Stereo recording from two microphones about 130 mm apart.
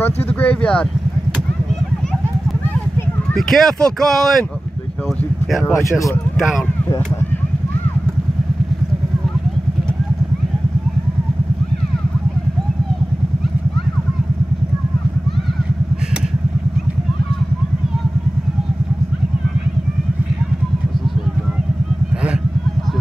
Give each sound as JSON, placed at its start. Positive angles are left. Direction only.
{"t": 0.0, "sound": "a sound", "side_deg": 10}
{"t": 3.3, "sound": "speech", "side_deg": 5}
{"t": 5.6, "sound": "speech", "side_deg": 20}